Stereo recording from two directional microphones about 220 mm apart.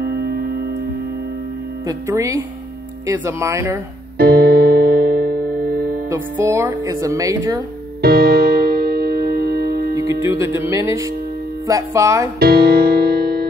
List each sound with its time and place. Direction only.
0.0 s music: 45° right (ahead or behind)
1.9 s speech: 15° right (ahead or behind)
4.2 s music: 45° right (ahead or behind)
6.0 s speech: 10° right (ahead or behind)
8.0 s music: 45° right (ahead or behind)
9.9 s speech: 15° right (ahead or behind)
12.4 s music: 45° right (ahead or behind)